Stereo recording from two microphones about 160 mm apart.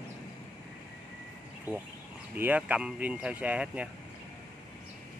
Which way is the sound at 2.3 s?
10° right (ahead or behind).